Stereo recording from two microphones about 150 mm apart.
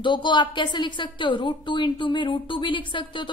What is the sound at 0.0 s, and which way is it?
A woman's voice, 30° left (ahead or behind).